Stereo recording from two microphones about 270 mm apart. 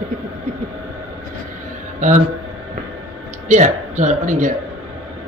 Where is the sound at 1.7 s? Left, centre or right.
Right.